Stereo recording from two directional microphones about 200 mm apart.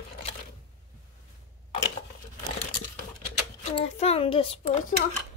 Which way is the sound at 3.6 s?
30° left (ahead or behind).